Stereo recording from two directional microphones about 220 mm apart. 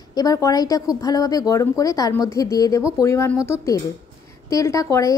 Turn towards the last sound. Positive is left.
turn(degrees=15)  # may be behind; listen again after turning